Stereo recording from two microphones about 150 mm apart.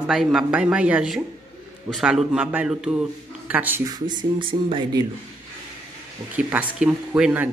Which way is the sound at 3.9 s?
30° right (ahead or behind).